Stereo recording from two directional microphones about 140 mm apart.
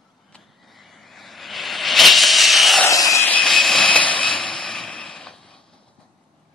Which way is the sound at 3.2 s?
5° left (ahead or behind).